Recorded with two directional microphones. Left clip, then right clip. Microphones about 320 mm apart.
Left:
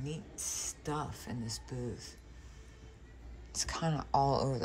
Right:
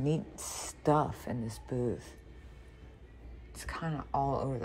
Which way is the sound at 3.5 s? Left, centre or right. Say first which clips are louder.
Left 3 dB; centre.